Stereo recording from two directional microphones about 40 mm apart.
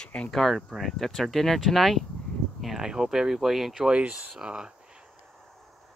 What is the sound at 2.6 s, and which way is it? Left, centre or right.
Speech, centre.